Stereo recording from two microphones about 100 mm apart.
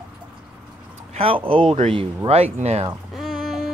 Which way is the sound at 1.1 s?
70° right (ahead or behind).